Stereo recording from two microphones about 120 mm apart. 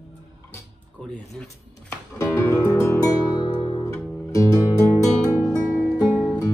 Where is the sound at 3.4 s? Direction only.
35° left (ahead or behind).